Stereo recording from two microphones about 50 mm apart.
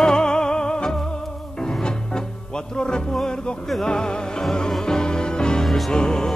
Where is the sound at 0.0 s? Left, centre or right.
Centre.